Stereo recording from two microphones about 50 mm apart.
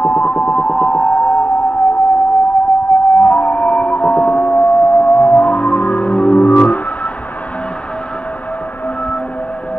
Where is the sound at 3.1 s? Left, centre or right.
Left.